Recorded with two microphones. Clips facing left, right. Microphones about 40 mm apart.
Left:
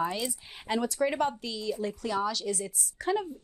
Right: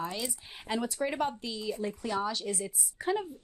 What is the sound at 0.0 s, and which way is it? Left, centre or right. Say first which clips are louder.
Speech: left 5 dB; centre.